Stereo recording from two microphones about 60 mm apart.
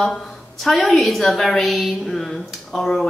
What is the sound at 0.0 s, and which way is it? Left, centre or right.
A woman's voice, centre.